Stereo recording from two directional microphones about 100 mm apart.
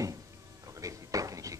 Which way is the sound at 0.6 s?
35° right (ahead or behind).